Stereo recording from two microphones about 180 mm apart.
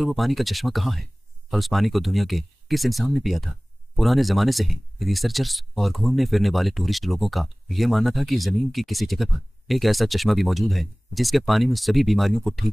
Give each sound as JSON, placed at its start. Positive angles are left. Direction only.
{"t": 0.0, "sound": "speech", "side_deg": 0}